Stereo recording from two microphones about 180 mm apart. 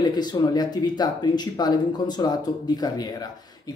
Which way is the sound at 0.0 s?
25° left (ahead or behind).